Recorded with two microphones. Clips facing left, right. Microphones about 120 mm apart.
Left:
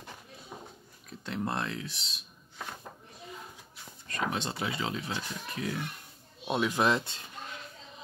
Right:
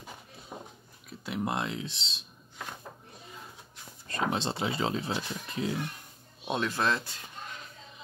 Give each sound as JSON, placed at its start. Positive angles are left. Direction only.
{"t": 0.5, "sound": "dog", "side_deg": -15}
{"t": 1.2, "sound": "speech", "side_deg": -10}
{"t": 4.1, "sound": "speech", "side_deg": -30}
{"t": 5.1, "sound": "speech", "side_deg": -20}
{"t": 6.4, "sound": "speech", "side_deg": 5}
{"t": 6.7, "sound": "speech", "side_deg": 15}